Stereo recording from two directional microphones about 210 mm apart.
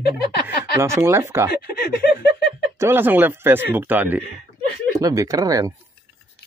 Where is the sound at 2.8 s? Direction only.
10° right (ahead or behind).